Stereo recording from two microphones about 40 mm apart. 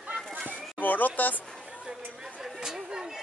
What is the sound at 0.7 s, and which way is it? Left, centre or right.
Speech, left.